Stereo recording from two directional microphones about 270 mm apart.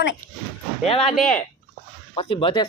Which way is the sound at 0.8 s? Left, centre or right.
Left.